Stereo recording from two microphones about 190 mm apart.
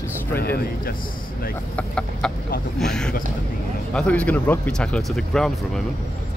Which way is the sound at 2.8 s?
5° left (ahead or behind).